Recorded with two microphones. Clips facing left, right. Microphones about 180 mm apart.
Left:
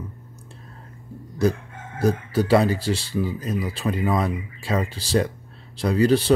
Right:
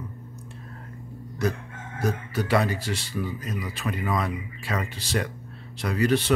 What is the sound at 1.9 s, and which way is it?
Speech, 30° left (ahead or behind).